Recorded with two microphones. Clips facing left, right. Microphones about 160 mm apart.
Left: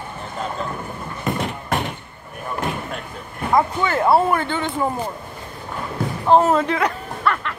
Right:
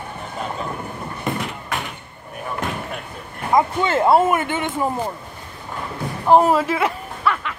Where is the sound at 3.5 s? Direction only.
20° right (ahead or behind).